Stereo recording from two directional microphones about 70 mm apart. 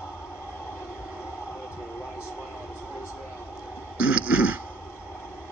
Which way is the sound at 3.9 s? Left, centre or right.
Centre.